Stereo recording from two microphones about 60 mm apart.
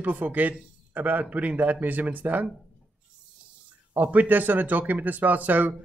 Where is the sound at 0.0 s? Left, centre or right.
Right.